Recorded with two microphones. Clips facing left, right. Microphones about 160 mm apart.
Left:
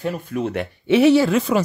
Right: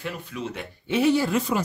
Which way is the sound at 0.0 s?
50° left (ahead or behind).